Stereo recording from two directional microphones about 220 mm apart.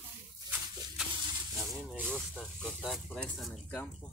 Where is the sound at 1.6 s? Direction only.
Centre (ahead or behind).